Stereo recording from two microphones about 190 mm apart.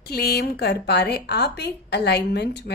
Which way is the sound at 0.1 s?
55° left (ahead or behind).